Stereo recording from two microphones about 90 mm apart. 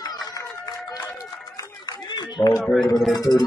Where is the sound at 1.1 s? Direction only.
40° left (ahead or behind).